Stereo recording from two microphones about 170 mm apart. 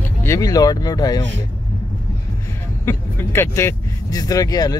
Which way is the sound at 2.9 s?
15° left (ahead or behind).